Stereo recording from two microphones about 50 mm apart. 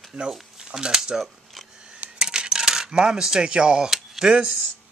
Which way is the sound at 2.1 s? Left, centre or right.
Centre.